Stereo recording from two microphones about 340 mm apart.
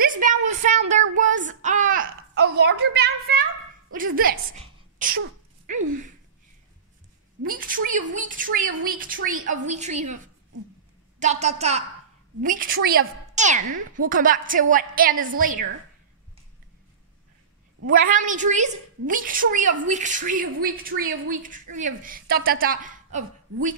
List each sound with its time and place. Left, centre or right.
0.0 s a sound: right
1.1 s a woman's voice: right
7.4 s a woman's voice: right
17.8 s a woman's voice: right